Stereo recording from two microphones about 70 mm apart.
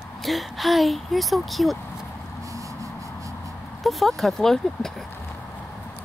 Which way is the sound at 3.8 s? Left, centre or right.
Centre.